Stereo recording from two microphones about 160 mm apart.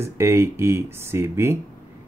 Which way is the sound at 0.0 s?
15° right (ahead or behind).